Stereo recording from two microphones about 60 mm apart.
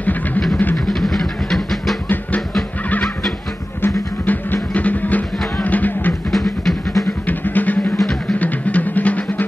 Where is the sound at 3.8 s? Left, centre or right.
Left.